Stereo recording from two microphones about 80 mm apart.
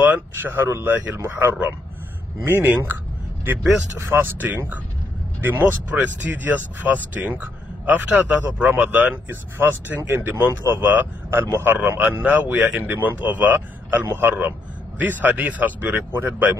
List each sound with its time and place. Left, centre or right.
0.0 s a man's voice: right
4.1 s a man's voice: right